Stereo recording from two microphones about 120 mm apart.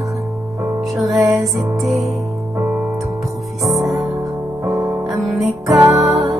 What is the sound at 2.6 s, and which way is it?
Music, 10° right (ahead or behind).